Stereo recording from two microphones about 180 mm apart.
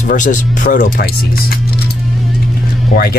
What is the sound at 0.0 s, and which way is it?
Speech, 45° left (ahead or behind).